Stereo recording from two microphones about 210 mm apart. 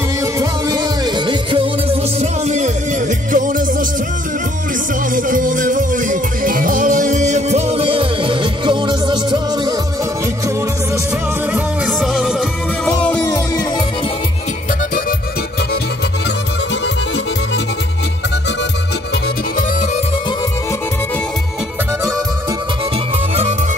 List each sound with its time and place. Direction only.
0.2 s music: 15° right (ahead or behind); by 3.6 s 40° right (ahead or behind)
5.1 s music: 40° right (ahead or behind); by 9.8 s 20° right (ahead or behind)
11.5 s music: 5° right (ahead or behind)